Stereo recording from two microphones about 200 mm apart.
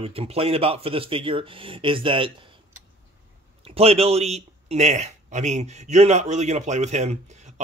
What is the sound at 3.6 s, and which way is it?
Speech, 30° right (ahead or behind).